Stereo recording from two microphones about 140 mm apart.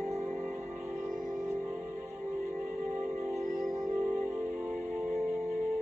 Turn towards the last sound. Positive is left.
turn(degrees=-10)  # may be behind; listen again after turning